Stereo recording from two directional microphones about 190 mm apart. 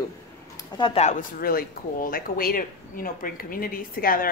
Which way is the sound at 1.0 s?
45° left (ahead or behind).